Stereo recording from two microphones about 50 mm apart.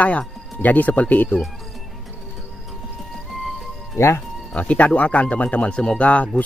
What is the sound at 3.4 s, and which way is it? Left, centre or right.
Music, centre.